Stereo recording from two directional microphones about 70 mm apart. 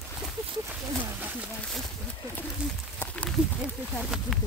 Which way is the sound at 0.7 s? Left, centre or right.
Right.